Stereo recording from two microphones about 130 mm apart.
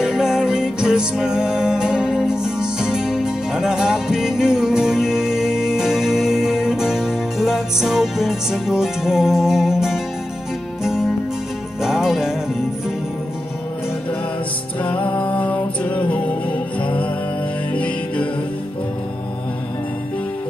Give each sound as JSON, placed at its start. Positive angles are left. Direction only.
{"t": 0.0, "sound": "music", "side_deg": -5}
{"t": 14.8, "sound": "music", "side_deg": 10}